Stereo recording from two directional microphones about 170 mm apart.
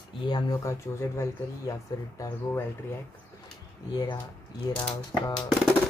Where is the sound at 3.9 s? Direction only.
25° left (ahead or behind).